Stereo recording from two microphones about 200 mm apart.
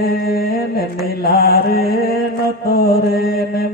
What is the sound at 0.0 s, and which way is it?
Mantra, 50° left (ahead or behind).